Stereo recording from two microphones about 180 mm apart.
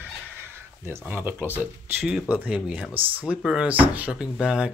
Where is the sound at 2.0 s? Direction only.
Centre (ahead or behind).